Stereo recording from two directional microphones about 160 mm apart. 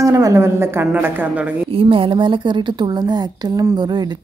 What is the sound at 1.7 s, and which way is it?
A woman's voice, 35° right (ahead or behind).